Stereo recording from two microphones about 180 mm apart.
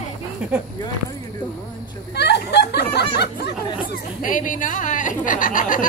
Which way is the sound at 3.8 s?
50° left (ahead or behind).